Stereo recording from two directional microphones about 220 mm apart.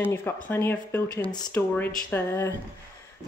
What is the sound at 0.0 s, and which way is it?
Speech, 10° left (ahead or behind).